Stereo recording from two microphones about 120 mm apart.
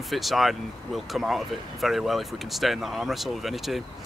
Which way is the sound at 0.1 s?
Centre (ahead or behind).